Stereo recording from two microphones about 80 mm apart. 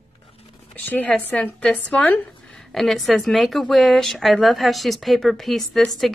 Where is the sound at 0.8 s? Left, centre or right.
Left.